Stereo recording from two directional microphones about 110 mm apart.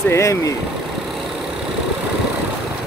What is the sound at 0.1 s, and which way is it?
Speech, 30° left (ahead or behind).